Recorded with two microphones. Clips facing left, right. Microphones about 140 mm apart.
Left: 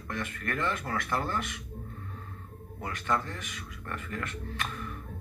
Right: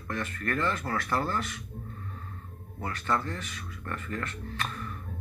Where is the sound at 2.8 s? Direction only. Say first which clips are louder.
Right 1 dB; 15° left (ahead or behind).